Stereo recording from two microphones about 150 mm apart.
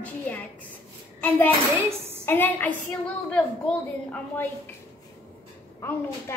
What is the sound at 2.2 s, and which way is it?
A woman's voice, 15° left (ahead or behind).